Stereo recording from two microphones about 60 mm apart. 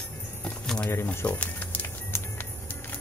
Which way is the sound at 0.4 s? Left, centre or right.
Centre.